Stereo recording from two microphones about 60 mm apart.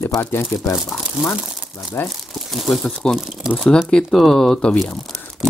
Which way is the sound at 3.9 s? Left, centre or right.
Centre.